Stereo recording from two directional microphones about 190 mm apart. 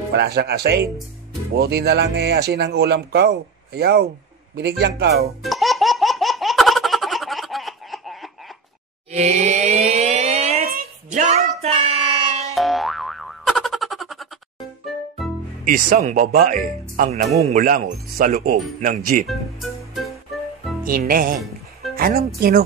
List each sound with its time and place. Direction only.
0.1 s speech: 60° right (ahead or behind)
5.4 s laughter: centre (ahead or behind)
9.1 s a sound: 35° right (ahead or behind)
10.6 s child singing: 45° right (ahead or behind)
12.5 s boing: centre (ahead or behind)
15.6 s speech: 45° right (ahead or behind)
19.2 s speech: centre (ahead or behind)
20.8 s speech: 50° right (ahead or behind)
21.9 s music: 50° right (ahead or behind)